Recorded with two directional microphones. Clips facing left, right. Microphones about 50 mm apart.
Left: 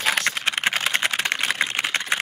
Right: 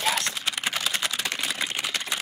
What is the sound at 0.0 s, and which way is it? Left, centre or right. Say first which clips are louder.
Typing: left 4 dB; left.